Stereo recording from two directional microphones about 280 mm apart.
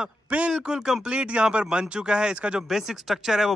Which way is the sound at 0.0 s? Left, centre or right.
Centre.